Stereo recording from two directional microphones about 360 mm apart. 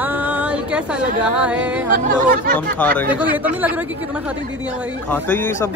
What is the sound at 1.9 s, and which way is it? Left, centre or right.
Speech, right.